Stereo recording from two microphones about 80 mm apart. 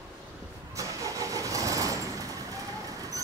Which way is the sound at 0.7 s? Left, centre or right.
Right.